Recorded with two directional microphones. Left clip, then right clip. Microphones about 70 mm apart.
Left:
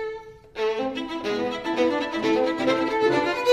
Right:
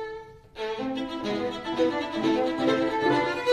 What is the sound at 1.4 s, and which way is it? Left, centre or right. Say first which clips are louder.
Music: left 2 dB; right.